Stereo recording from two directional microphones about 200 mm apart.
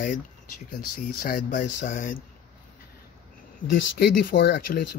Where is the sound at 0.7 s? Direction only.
45° left (ahead or behind).